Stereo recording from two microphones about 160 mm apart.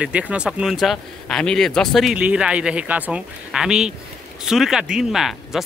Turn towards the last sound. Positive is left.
turn(degrees=-5)  # may be behind; listen again after turning